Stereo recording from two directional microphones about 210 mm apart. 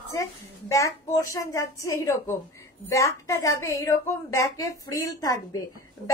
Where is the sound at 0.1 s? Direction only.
15° left (ahead or behind).